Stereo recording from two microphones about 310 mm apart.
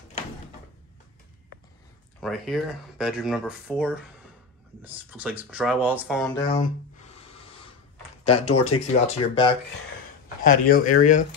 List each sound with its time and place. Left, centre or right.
2.1 s speech: centre
6.5 s a sound: left
8.2 s speech: centre